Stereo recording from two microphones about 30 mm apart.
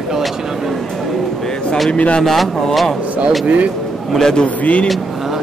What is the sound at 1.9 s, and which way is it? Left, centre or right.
Speech, left.